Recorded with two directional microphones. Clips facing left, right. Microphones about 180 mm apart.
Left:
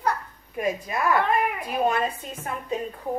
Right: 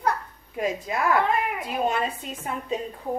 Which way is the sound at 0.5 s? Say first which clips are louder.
Even; 25° right (ahead or behind).